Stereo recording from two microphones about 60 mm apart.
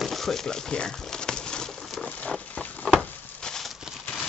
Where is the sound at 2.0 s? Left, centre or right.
Left.